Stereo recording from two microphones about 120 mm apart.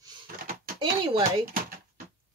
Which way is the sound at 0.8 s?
45° right (ahead or behind).